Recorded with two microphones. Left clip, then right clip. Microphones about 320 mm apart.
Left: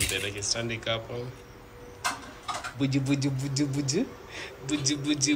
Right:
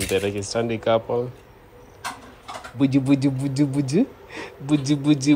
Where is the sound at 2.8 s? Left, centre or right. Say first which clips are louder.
Right 10 dB; centre.